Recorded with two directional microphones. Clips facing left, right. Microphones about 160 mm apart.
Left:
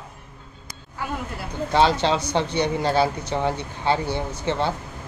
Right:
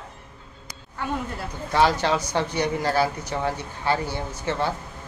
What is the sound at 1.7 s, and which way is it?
Speech, 25° left (ahead or behind).